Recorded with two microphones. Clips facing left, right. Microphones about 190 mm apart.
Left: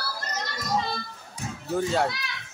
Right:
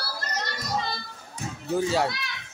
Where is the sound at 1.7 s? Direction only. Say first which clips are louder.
Even; 5° right (ahead or behind).